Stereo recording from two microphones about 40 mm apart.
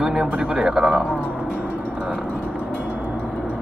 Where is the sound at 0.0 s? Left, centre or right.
Centre.